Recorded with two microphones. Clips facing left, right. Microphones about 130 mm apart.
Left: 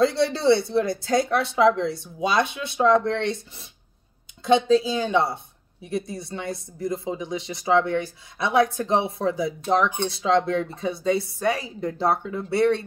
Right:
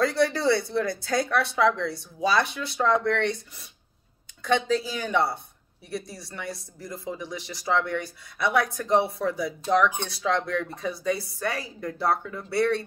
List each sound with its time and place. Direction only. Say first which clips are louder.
0.0 s speech: left 3 dB; 25° left (ahead or behind)